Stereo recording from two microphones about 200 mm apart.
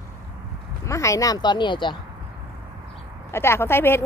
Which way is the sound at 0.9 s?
15° left (ahead or behind).